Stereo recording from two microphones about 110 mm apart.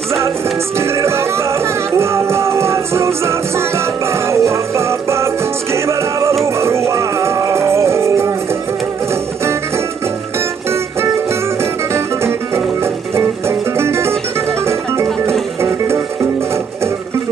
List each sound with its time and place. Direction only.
0.7 s music: 25° right (ahead or behind)
11.9 s music: 25° right (ahead or behind)